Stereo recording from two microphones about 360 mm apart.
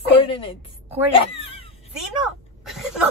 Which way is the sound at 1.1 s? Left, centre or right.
Centre.